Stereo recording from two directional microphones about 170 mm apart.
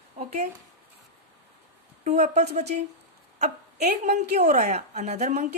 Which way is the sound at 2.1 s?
45° right (ahead or behind).